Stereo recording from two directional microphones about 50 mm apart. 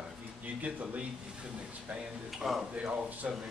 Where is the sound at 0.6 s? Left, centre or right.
Right.